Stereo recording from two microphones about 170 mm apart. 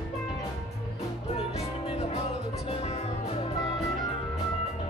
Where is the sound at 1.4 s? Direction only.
40° left (ahead or behind).